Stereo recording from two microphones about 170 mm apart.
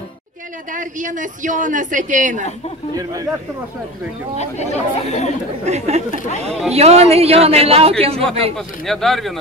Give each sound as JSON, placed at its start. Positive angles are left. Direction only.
{"t": 0.7, "sound": "a woman's voice", "side_deg": -50}
{"t": 3.0, "sound": "a man's voice", "side_deg": -20}
{"t": 4.4, "sound": "speech", "side_deg": 40}
{"t": 5.7, "sound": "a man's voice", "side_deg": -40}
{"t": 8.5, "sound": "speech", "side_deg": 0}